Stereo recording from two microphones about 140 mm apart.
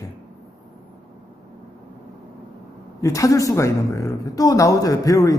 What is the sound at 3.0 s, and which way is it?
A woman's voice, 25° left (ahead or behind).